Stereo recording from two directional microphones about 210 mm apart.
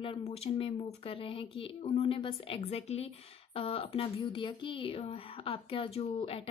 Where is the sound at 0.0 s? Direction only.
25° left (ahead or behind).